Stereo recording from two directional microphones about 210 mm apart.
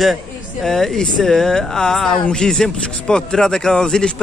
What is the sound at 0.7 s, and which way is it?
Speech, centre (ahead or behind).